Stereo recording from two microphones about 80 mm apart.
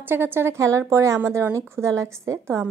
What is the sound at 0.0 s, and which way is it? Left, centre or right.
A woman's voice, right.